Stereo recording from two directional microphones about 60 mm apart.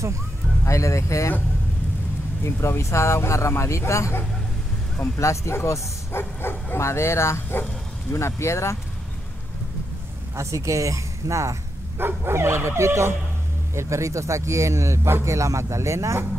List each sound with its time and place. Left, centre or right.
0.7 s speech: left
2.4 s speech: left
10.3 s speech: right